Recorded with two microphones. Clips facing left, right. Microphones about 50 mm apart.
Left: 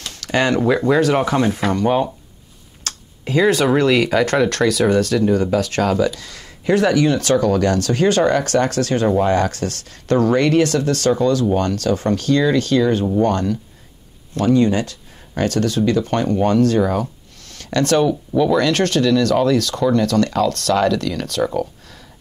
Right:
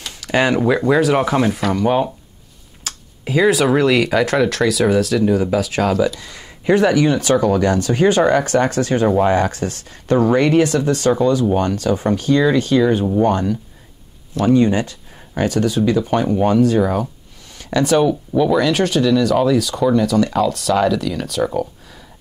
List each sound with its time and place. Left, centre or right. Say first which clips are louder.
0.0 s speech: right 1 dB; centre
6.1 s speech: right 1 dB; centre